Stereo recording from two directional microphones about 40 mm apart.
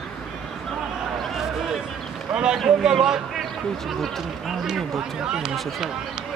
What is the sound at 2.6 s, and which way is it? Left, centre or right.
Speech, centre.